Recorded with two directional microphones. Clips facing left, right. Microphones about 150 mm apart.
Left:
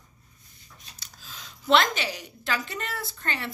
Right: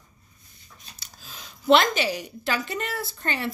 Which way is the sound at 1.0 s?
10° right (ahead or behind).